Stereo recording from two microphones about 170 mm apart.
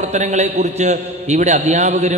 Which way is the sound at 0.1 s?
40° right (ahead or behind).